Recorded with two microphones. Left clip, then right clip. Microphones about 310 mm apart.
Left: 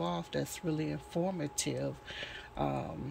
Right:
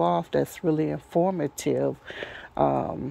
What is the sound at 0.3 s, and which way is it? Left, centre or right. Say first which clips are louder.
Speech: right 12 dB; centre.